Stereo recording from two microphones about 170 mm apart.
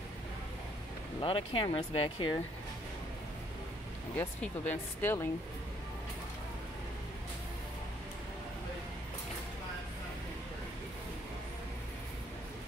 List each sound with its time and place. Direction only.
1.2 s speech: 30° left (ahead or behind)
4.2 s speech: 10° left (ahead or behind)